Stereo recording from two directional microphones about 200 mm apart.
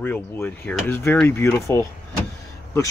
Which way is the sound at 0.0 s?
10° left (ahead or behind).